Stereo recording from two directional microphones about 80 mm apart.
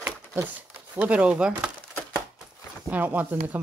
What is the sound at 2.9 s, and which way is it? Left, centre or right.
Speech, right.